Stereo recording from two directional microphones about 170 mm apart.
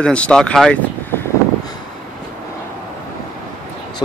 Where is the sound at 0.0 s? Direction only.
5° left (ahead or behind).